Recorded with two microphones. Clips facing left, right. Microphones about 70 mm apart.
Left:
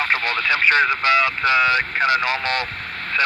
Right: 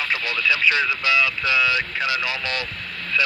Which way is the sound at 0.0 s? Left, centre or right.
Left.